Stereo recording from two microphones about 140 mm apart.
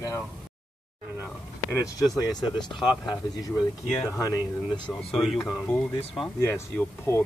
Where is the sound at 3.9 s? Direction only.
20° left (ahead or behind).